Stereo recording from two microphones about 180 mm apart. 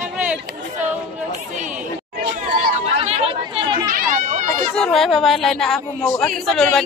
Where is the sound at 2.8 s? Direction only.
35° right (ahead or behind).